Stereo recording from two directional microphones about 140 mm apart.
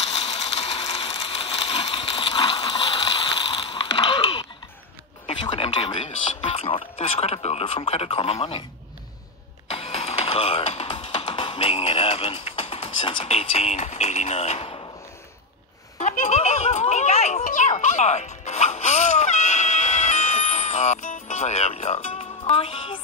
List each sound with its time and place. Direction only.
0.0 s ratchet: 45° left (ahead or behind)
5.2 s a sound: 40° left (ahead or behind)
6.0 s speech: 45° left (ahead or behind)
9.7 s music: 45° left (ahead or behind)
11.2 s speech: 35° left (ahead or behind)
16.0 s music: 55° left (ahead or behind); by 22.9 s 40° left (ahead or behind)